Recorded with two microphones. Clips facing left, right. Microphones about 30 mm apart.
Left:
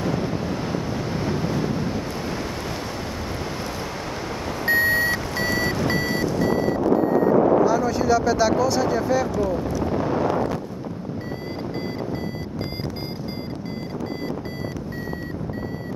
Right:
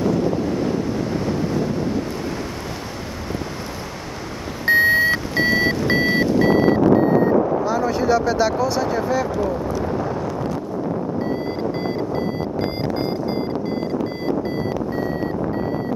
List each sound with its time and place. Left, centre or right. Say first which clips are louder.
0.0 s vehicle: right 5 dB; centre
4.6 s reversing beeps: right 5 dB; centre; by 6.8 s right
7.6 s speech: even; right